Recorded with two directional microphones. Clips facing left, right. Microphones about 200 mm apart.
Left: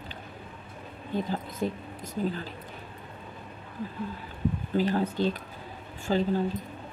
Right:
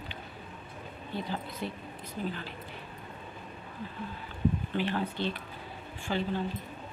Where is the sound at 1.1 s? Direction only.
45° left (ahead or behind).